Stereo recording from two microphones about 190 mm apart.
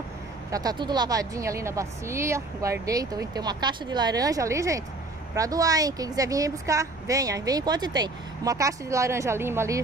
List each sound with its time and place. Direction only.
0.5 s a woman's voice: 20° right (ahead or behind)